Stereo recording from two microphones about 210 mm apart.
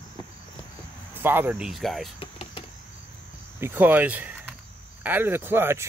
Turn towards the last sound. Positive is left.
turn(degrees=-10)  # may be behind; listen again after turning